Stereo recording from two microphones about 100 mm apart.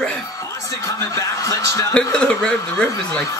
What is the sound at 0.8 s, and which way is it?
A man's voice, 35° left (ahead or behind).